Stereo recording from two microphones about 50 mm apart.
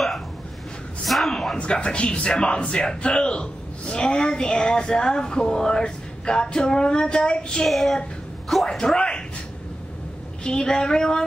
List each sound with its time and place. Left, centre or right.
1.0 s a sound: centre
1.6 s a woman's voice: left
7.6 s child singing: centre
8.6 s speech: centre
10.4 s a woman's voice: centre